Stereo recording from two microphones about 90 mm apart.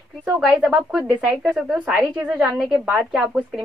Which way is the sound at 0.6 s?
5° right (ahead or behind).